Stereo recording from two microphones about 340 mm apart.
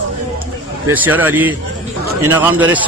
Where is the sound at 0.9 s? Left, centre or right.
Centre.